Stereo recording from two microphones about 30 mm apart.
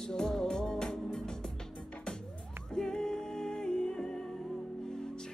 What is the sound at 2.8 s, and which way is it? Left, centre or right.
Music, left.